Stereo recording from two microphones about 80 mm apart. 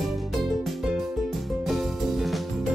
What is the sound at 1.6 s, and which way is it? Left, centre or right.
Music, centre.